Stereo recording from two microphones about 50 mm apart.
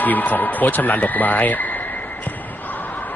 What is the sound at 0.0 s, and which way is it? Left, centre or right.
Speech, left.